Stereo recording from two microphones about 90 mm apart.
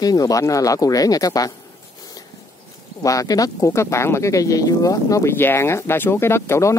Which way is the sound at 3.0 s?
40° left (ahead or behind).